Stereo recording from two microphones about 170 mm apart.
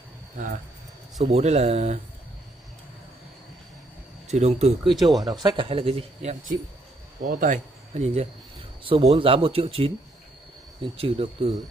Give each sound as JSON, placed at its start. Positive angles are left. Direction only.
{"t": 1.2, "sound": "speech", "side_deg": -40}
{"t": 4.3, "sound": "speech", "side_deg": -40}
{"t": 4.8, "sound": "speech", "side_deg": 0}
{"t": 5.2, "sound": "speech", "side_deg": -20}
{"t": 7.2, "sound": "speech", "side_deg": -50}